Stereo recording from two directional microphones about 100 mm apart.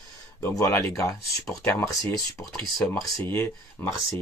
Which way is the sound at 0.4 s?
30° left (ahead or behind).